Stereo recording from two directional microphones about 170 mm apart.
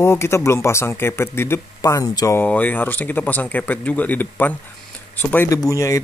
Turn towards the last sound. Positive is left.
turn(degrees=20)  # may be behind; listen again after turning